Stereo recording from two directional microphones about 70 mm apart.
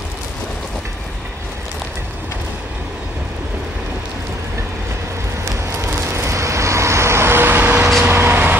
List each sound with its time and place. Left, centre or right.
5.8 s vehicle: right